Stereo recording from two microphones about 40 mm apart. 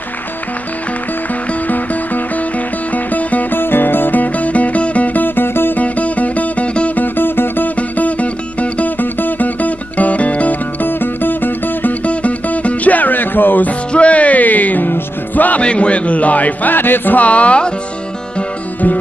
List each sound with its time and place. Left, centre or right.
2.9 s music: left
3.5 s music: left
5.8 s music: left
7.0 s music: left
8.0 s music: left
9.0 s music: left
10.8 s music: left
12.0 s music: left
13.7 s music: left
15.6 s a sound: left
16.7 s music: left
17.2 s speech: left